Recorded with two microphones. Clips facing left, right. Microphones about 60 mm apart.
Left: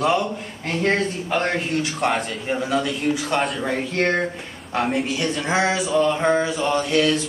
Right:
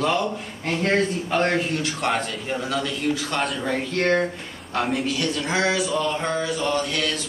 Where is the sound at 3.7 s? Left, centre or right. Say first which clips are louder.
Right 3 dB; centre.